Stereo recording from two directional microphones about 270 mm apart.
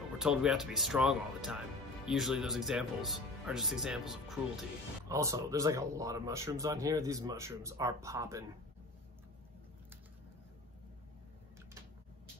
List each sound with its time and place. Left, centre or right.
0.2 s speech: centre
5.0 s speech: centre